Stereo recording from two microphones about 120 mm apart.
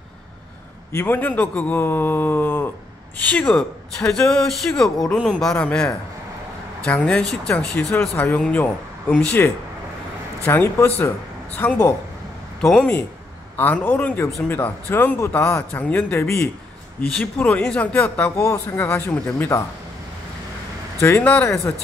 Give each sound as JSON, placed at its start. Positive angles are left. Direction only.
{"t": 0.9, "sound": "a man's voice", "side_deg": 15}
{"t": 6.9, "sound": "a man's voice", "side_deg": 10}
{"t": 13.6, "sound": "a man's voice", "side_deg": 15}
{"t": 18.3, "sound": "a man's voice", "side_deg": 25}
{"t": 21.0, "sound": "a man's voice", "side_deg": 20}